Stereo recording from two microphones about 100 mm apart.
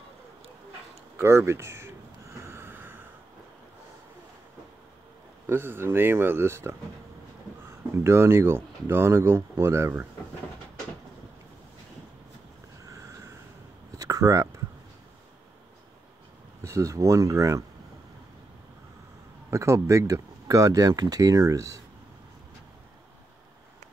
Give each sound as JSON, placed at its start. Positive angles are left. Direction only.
{"t": 1.1, "sound": "a sound", "side_deg": -25}
{"t": 5.5, "sound": "speech", "side_deg": -20}
{"t": 8.0, "sound": "speech", "side_deg": -25}
{"t": 12.8, "sound": "a sound", "side_deg": -30}
{"t": 16.6, "sound": "speech", "side_deg": -30}
{"t": 19.5, "sound": "speech", "side_deg": -30}